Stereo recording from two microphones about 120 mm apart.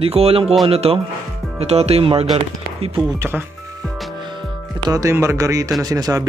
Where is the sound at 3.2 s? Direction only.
20° right (ahead or behind).